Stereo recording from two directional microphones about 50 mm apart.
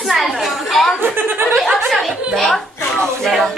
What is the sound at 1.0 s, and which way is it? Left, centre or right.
Chuckle, right.